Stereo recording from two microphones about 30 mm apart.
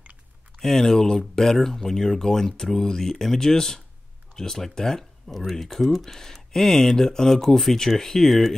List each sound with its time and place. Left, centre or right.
0.6 s speech: centre